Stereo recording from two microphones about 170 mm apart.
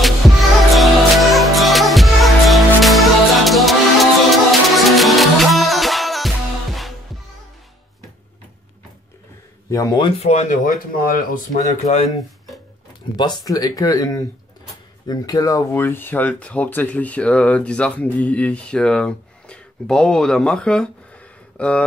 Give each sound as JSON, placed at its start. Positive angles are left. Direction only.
{"t": 0.0, "sound": "music", "side_deg": 0}
{"t": 9.7, "sound": "speech", "side_deg": 20}
{"t": 10.0, "sound": "speech", "side_deg": 35}
{"t": 13.1, "sound": "speech", "side_deg": 25}